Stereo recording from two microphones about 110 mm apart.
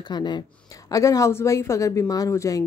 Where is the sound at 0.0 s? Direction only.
40° left (ahead or behind).